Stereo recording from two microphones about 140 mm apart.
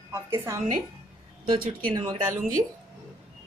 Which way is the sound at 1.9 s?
40° right (ahead or behind).